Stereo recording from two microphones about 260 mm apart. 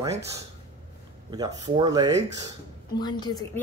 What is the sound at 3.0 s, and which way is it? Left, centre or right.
Speech, centre.